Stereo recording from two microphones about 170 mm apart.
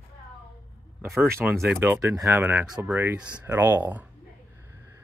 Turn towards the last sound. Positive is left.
turn(degrees=-10)  # may be behind; listen again after turning